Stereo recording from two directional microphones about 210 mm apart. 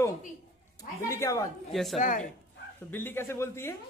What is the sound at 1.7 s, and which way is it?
Speech, centre (ahead or behind).